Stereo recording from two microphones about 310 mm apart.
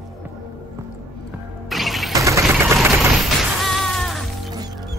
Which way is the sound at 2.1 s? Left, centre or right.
Centre.